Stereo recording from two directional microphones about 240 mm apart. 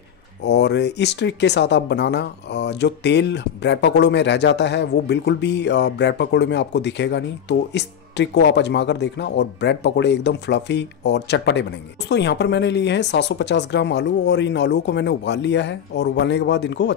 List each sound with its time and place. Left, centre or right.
0.4 s speech: left